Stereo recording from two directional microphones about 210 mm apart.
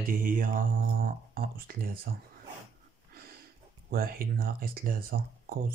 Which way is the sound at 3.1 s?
45° right (ahead or behind).